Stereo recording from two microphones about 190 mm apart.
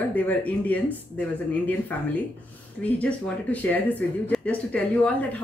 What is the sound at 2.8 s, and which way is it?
Speech, 5° left (ahead or behind).